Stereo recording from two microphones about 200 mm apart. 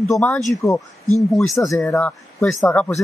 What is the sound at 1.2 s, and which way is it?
Speech, centre (ahead or behind).